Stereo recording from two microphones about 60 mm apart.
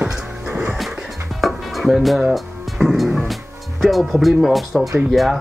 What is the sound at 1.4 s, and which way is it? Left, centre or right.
Music, centre.